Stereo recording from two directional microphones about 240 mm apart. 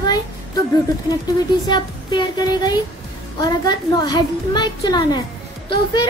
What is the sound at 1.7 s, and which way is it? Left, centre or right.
A child's voice, centre.